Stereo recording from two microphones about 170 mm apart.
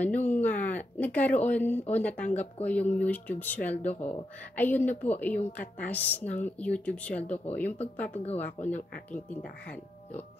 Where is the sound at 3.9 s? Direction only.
40° left (ahead or behind).